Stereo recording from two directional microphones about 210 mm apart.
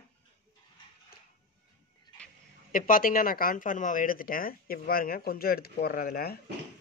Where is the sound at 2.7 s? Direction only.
40° left (ahead or behind).